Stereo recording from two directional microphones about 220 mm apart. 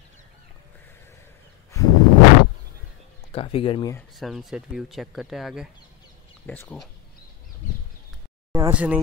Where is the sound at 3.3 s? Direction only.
25° left (ahead or behind).